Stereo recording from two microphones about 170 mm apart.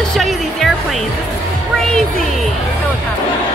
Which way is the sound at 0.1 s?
Centre (ahead or behind).